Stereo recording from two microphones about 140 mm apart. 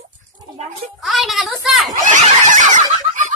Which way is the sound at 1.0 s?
Centre (ahead or behind).